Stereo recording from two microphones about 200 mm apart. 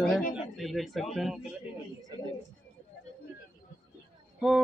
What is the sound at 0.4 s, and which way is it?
Speech, centre (ahead or behind).